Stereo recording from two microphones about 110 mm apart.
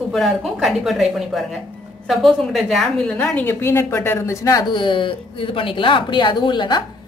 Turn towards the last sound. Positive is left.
turn(degrees=45)  # may be behind; listen again after turning